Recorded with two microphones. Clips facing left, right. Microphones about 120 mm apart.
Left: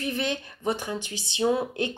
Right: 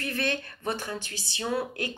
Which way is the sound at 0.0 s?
15° left (ahead or behind).